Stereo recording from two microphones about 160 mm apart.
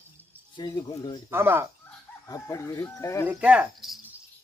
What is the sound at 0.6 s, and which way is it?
Speech, 25° left (ahead or behind).